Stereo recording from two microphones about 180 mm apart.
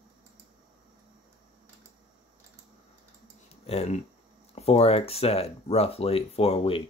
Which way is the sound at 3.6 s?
35° left (ahead or behind).